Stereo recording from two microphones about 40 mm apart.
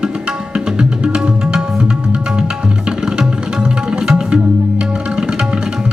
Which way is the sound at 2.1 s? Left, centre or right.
Centre.